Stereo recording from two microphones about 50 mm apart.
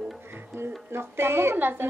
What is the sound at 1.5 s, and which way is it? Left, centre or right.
Speech, right.